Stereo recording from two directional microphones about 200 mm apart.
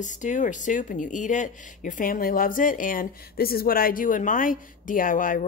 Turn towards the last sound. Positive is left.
turn(degrees=40)  # may be behind; listen again after turning